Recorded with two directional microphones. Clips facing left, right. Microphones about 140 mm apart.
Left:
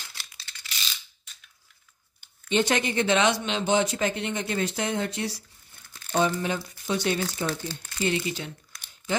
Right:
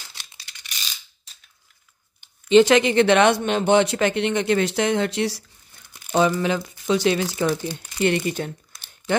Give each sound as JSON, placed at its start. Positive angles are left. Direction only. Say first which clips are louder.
{"t": 0.1, "sound": "a sound", "louder": "right 1 dB", "side_deg": -20}
{"t": 1.3, "sound": "scissors", "louder": "left 1 dB", "side_deg": -35}
{"t": 2.5, "sound": "speech", "louder": "right 10 dB", "side_deg": -90}
{"t": 7.6, "sound": "speech", "louder": "right 6 dB", "side_deg": -15}
{"t": 8.0, "sound": "speech", "louder": "right 6 dB", "side_deg": -55}